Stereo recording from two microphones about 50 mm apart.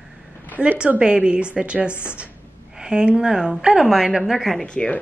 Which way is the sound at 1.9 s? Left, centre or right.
Left.